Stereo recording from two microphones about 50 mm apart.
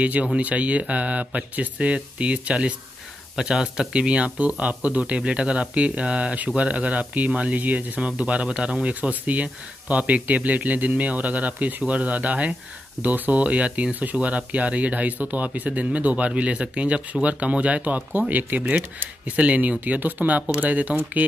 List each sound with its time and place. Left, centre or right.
0.0 s speech: right